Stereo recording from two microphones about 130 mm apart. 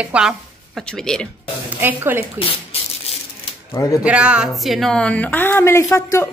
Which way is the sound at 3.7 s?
25° left (ahead or behind).